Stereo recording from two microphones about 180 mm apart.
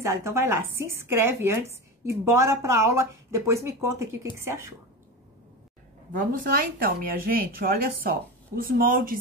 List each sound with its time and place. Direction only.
0.0 s speech: 15° right (ahead or behind)
6.1 s speech: 50° right (ahead or behind)